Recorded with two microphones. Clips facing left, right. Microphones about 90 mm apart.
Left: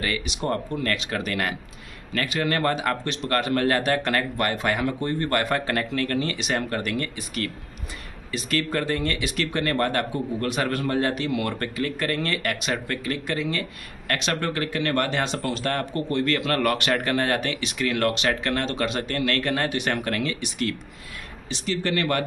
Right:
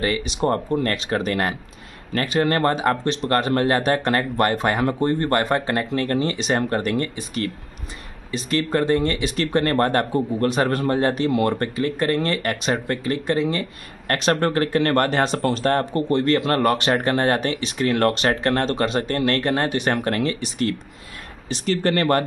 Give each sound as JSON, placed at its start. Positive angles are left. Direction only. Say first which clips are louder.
{"t": 0.0, "sound": "speech", "louder": "right 6 dB", "side_deg": -30}
{"t": 21.5, "sound": "speech", "louder": "right 5 dB", "side_deg": -45}